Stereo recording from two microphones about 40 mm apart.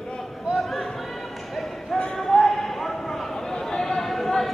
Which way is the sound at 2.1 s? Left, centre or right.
Centre.